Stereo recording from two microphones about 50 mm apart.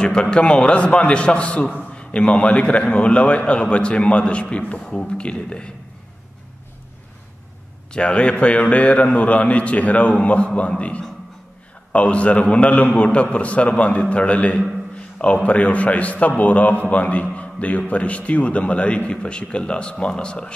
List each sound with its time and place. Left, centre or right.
0.0 s a man's voice: centre
7.9 s a man's voice: left